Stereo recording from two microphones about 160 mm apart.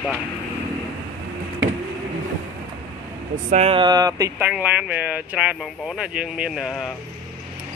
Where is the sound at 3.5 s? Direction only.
40° right (ahead or behind).